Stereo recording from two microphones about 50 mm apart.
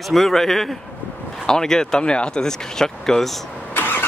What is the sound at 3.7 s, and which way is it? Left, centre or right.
Vehicle, left.